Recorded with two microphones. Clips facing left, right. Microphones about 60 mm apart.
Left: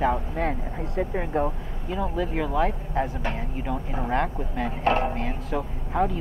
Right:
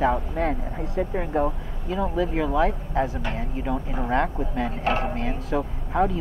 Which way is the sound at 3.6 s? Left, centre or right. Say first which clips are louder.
Right 2 dB; centre.